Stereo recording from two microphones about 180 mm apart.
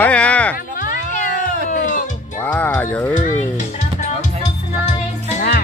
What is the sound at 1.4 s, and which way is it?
Cat, 45° left (ahead or behind).